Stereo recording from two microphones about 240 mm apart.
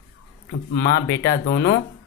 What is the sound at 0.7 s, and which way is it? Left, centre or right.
Speech, left.